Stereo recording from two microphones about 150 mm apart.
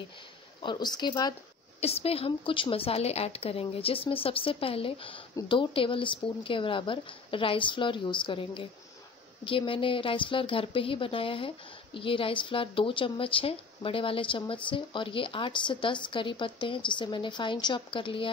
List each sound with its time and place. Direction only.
0.6 s speech: 30° left (ahead or behind)
1.8 s speech: 40° left (ahead or behind)